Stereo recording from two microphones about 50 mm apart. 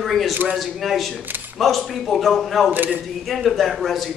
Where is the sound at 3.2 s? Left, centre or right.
Centre.